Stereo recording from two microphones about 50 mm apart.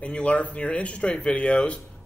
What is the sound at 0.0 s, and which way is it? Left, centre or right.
Speech, left.